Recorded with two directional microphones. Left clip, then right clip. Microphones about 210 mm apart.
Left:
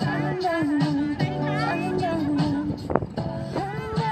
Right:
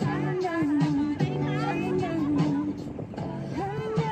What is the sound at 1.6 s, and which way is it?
Music, 5° left (ahead or behind).